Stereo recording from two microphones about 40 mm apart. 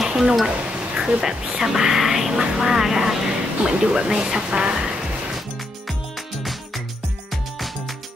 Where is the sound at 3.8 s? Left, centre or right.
Right.